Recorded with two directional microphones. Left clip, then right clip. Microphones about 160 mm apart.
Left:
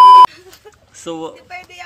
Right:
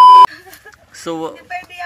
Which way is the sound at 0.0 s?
Centre (ahead or behind).